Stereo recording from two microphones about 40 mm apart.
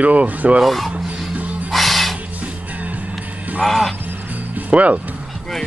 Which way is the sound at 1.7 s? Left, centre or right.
Centre.